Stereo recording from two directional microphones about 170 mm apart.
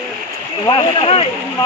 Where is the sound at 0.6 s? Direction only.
30° left (ahead or behind).